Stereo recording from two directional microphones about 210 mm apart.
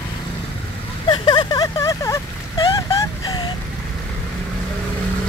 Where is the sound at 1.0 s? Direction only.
20° left (ahead or behind).